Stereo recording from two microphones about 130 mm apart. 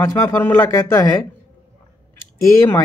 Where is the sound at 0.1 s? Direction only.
15° left (ahead or behind).